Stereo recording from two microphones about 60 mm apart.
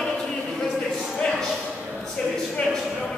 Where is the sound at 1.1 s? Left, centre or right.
Centre.